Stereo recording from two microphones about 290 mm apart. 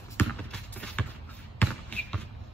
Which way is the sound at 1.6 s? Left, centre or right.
Centre.